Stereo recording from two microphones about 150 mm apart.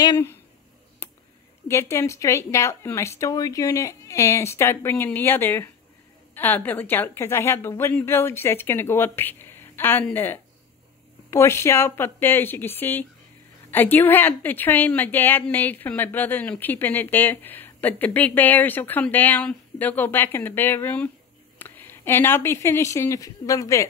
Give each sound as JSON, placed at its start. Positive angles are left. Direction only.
{"t": 0.0, "sound": "speech", "side_deg": 20}
{"t": 1.0, "sound": "a sound", "side_deg": 15}
{"t": 1.7, "sound": "a woman's voice", "side_deg": 15}